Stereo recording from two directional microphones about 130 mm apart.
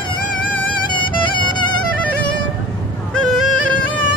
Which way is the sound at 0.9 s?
35° left (ahead or behind).